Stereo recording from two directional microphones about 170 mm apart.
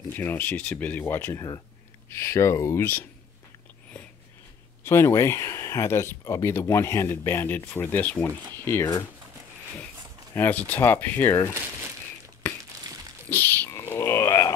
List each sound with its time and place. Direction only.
0.1 s speech: 10° left (ahead or behind)
4.8 s speech: 15° left (ahead or behind)
10.3 s speech: 10° left (ahead or behind)
13.3 s a sound: 10° left (ahead or behind)